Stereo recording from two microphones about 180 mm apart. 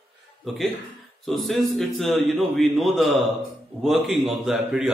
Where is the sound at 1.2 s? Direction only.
Centre (ahead or behind).